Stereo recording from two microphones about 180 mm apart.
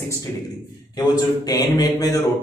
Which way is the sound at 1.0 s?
20° left (ahead or behind).